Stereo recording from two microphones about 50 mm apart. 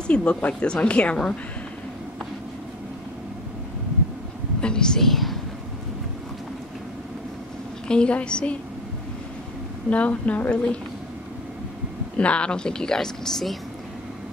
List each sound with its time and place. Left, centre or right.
0.0 s speech: left
4.6 s a woman's voice: centre
7.9 s speech: left
9.8 s speech: left
12.2 s a woman's voice: left